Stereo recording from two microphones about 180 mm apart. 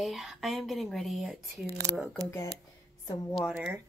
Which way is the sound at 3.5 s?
10° right (ahead or behind).